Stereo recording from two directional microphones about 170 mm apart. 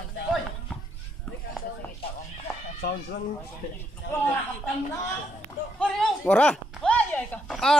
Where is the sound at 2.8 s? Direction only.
80° left.